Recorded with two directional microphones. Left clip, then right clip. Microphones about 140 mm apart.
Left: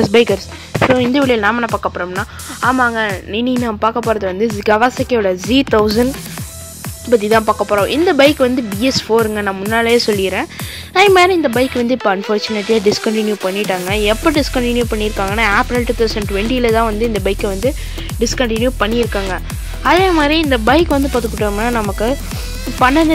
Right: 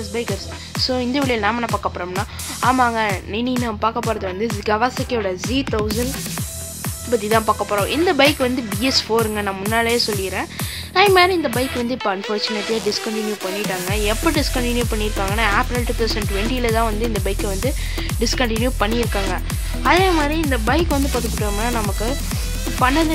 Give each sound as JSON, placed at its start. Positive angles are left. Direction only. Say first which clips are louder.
{"t": 0.1, "sound": "speech", "louder": "left 14 dB", "side_deg": 75}
{"t": 0.9, "sound": "speech", "louder": "left 5 dB", "side_deg": 35}
{"t": 5.5, "sound": "speech", "louder": "left 9 dB", "side_deg": 65}
{"t": 7.1, "sound": "speech", "louder": "left 6 dB", "side_deg": 40}
{"t": 9.8, "sound": "speech", "louder": "left 7 dB", "side_deg": 45}
{"t": 13.1, "sound": "speech", "louder": "left 7 dB", "side_deg": 55}
{"t": 18.2, "sound": "speech", "louder": "left 5 dB", "side_deg": 25}
{"t": 20.2, "sound": "speech", "louder": "left 8 dB", "side_deg": 50}